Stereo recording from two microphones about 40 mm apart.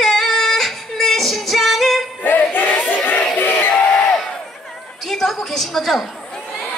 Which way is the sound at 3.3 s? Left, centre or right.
Left.